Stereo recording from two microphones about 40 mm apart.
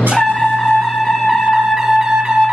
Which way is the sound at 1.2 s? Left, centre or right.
Centre.